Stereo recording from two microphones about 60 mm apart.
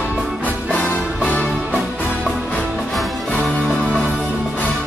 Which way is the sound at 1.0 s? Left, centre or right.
Centre.